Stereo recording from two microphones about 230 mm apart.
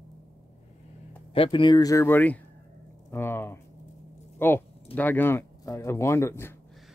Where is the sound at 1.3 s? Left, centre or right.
Left.